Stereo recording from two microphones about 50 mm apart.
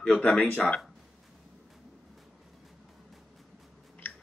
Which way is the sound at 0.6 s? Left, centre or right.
Centre.